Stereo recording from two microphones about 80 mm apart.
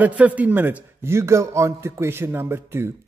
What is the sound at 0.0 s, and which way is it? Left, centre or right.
A man's voice, centre.